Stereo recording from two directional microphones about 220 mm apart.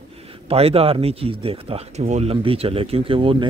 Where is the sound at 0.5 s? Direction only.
25° right (ahead or behind).